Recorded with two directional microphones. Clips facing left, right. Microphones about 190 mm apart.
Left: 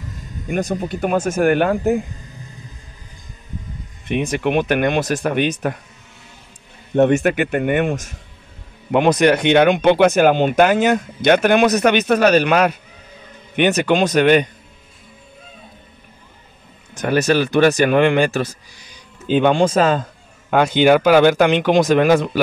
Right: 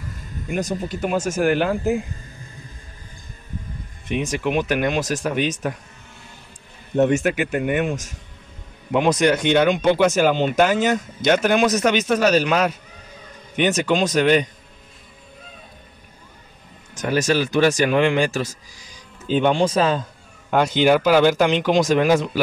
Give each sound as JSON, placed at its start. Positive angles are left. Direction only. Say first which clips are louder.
{"t": 0.5, "sound": "speech", "louder": "left 3 dB", "side_deg": 55}
{"t": 2.2, "sound": "a sound", "louder": "left 2 dB", "side_deg": 20}
{"t": 4.1, "sound": "speech", "louder": "left 3 dB", "side_deg": 60}
{"t": 7.0, "sound": "speech", "louder": "left 3 dB", "side_deg": 60}
{"t": 16.9, "sound": "speech", "louder": "left 3 dB", "side_deg": 60}
{"t": 20.5, "sound": "speech", "louder": "left 3 dB", "side_deg": 60}